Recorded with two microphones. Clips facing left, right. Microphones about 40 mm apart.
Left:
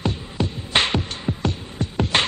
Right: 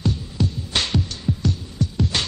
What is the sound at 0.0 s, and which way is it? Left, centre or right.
Music, left.